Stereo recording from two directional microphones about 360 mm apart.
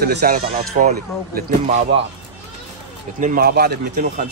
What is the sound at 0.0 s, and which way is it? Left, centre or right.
Speech, right.